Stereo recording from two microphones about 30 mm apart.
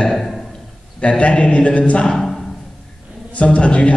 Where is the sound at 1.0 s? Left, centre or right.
Left.